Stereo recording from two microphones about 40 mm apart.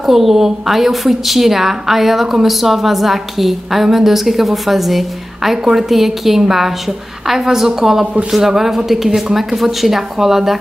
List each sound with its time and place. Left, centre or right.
0.0 s a woman's voice: centre
8.0 s speech: right
8.3 s speech: centre